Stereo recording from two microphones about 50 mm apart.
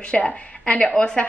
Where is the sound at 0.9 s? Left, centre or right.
Centre.